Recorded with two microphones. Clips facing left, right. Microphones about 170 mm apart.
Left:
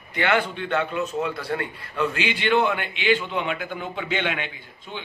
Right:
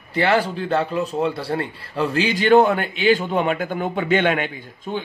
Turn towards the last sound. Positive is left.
turn(degrees=-45)  # may be behind; listen again after turning